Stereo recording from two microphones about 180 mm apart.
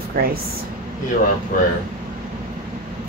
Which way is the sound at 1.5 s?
50° left (ahead or behind).